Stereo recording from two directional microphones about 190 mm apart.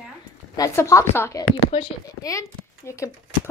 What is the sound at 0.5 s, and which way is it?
A woman's voice, 15° left (ahead or behind).